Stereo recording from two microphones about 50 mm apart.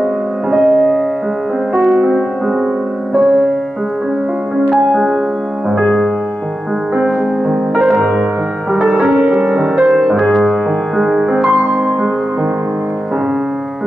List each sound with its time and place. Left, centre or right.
0.0 s music: centre
4.9 s music: centre
7.0 s music: centre
7.8 s music: centre
8.7 s music: centre
9.6 s music: centre
11.0 s music: centre
11.4 s music: right